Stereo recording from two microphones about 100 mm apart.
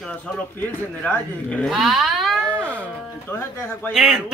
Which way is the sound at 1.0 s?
10° left (ahead or behind).